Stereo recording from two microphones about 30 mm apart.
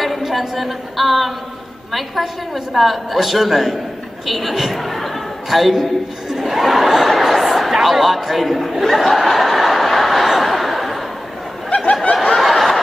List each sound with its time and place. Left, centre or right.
0.0 s a woman's voice: centre
6.4 s a sound: centre
11.7 s snicker: left
12.4 s snicker: centre